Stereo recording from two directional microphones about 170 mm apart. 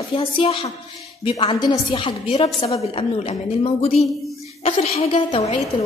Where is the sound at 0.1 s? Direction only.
30° left (ahead or behind).